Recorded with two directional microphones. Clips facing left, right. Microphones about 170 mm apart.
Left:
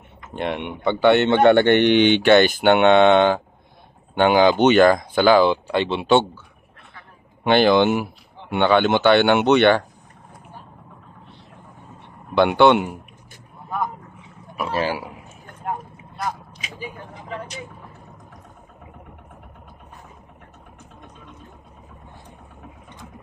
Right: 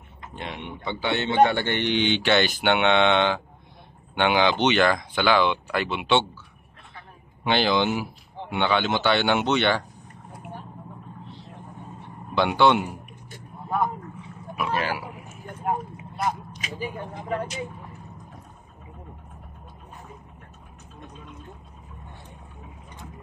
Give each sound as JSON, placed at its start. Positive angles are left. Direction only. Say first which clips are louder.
{"t": 0.3, "sound": "a man's voice", "louder": "left 9 dB", "side_deg": 65}
{"t": 7.4, "sound": "a man's voice", "louder": "left 7 dB", "side_deg": 55}
{"t": 12.4, "sound": "a man's voice", "louder": "left 5 dB", "side_deg": 60}
{"t": 14.6, "sound": "speech", "louder": "left 3 dB", "side_deg": 35}